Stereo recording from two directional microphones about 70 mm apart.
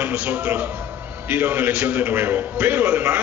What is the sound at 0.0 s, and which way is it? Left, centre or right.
A man's voice, right.